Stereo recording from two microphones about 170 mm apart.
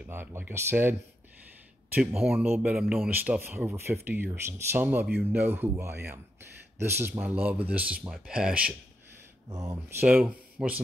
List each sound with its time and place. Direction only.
0.0 s a man's voice: 15° right (ahead or behind)
2.0 s a man's voice: 5° right (ahead or behind)
9.5 s speech: 20° right (ahead or behind)
10.0 s speech: 5° right (ahead or behind)